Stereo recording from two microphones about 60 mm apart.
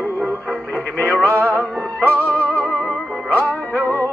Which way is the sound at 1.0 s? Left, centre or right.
Left.